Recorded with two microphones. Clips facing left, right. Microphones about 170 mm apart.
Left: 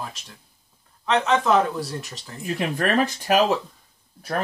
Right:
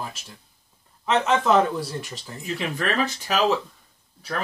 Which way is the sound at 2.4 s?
50° left (ahead or behind).